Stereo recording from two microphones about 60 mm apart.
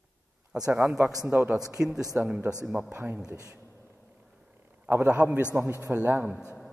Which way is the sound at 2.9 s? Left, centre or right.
Right.